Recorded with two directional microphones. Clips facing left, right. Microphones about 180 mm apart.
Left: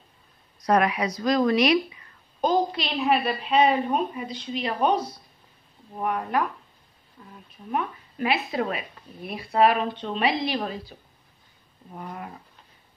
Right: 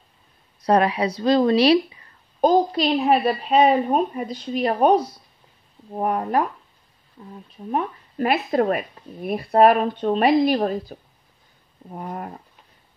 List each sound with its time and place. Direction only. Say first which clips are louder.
0.6 s speech: right 3 dB; 30° right (ahead or behind)
2.4 s speech: right 6 dB; 40° right (ahead or behind)
7.2 s speech: right 7 dB; 25° right (ahead or behind)
7.7 s speech: right 4 dB; 45° right (ahead or behind)